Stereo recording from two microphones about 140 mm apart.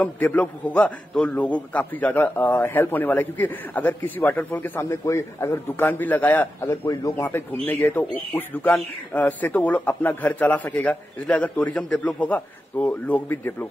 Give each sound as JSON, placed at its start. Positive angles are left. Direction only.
{"t": 0.0, "sound": "a man's voice", "side_deg": 10}
{"t": 6.8, "sound": "a man's voice", "side_deg": 25}